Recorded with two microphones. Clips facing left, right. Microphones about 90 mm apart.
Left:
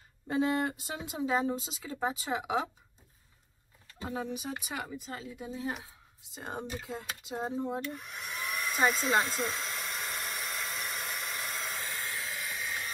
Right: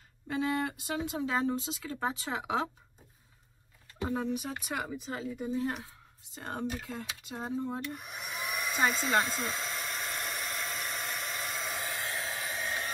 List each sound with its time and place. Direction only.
0.3 s speech: 25° left (ahead or behind); by 2.6 s 5° left (ahead or behind)
4.1 s speech: 5° left (ahead or behind)
6.4 s speech: 15° left (ahead or behind)
7.8 s speech: 5° right (ahead or behind)
8.4 s hair dryer: 5° right (ahead or behind)
11.8 s hair dryer: 20° right (ahead or behind)
12.2 s hair dryer: 35° right (ahead or behind)